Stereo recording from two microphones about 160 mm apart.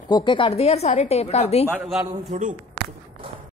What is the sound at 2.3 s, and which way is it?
Speech, 50° right (ahead or behind).